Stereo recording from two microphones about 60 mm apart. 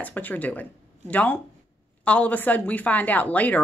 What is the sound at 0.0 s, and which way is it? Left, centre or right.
A woman's voice, left.